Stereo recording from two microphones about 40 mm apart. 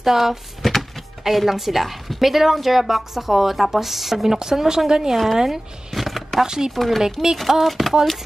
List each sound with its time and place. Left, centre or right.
0.0 s a woman's voice: centre
5.1 s a woman's voice: centre
5.4 s a sound: centre
6.4 s speech: centre
6.7 s a woman's voice: centre